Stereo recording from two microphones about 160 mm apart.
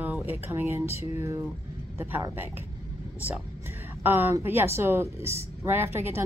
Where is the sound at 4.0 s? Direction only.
15° right (ahead or behind).